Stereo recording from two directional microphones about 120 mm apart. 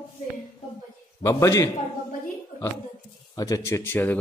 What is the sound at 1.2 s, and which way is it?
Speech, 25° left (ahead or behind).